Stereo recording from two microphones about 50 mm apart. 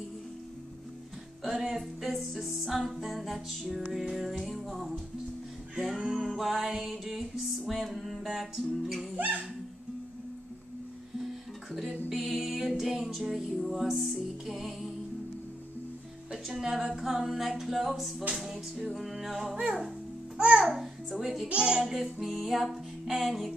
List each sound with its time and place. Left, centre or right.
1.4 s music: centre
9.1 s dog: right
12.1 s music: centre
16.6 s music: centre
20.3 s a child's voice: right
21.8 s music: centre